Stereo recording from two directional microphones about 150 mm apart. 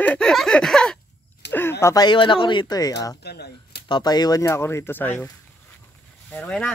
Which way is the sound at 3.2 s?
90° left.